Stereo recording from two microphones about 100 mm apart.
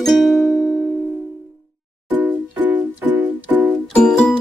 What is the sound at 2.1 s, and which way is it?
Music, 15° right (ahead or behind).